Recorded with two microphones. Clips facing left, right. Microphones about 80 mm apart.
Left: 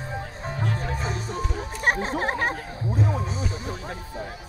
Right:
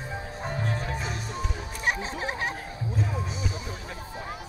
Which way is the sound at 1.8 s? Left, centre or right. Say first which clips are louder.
Left 5 dB; left.